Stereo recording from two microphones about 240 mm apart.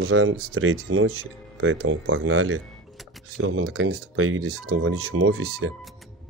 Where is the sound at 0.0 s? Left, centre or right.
Right.